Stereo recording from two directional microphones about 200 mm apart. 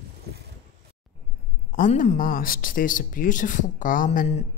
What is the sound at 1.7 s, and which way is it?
Speech, 40° left (ahead or behind).